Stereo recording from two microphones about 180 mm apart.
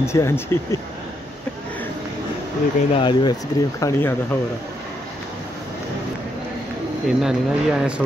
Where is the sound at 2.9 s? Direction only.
25° left (ahead or behind).